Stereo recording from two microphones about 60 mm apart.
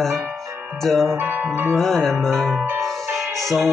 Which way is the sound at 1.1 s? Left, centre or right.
Right.